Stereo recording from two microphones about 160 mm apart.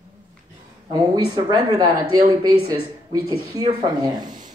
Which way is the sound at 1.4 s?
25° right (ahead or behind).